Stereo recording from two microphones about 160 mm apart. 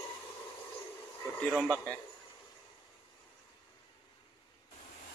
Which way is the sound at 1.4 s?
Centre (ahead or behind).